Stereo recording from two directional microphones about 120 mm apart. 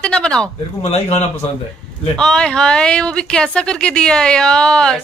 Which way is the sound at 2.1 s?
5° left (ahead or behind).